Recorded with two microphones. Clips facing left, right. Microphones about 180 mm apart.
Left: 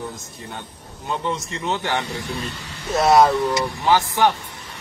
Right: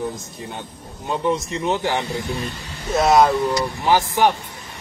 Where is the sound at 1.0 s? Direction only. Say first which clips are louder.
Right 4 dB; 15° right (ahead or behind).